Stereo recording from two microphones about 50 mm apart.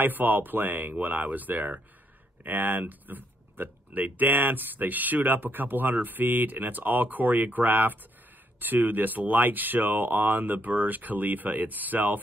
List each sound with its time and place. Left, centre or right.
0.0 s speech: right